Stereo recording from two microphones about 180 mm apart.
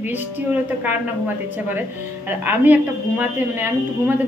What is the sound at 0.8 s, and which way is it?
A woman's voice, 10° right (ahead or behind).